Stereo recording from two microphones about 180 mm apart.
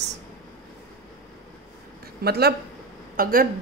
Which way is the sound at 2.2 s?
60° right (ahead or behind).